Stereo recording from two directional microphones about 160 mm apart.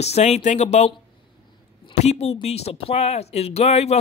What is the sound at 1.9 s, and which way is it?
Speech, 45° left (ahead or behind).